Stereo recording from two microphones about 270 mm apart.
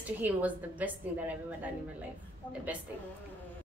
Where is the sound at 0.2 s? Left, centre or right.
Centre.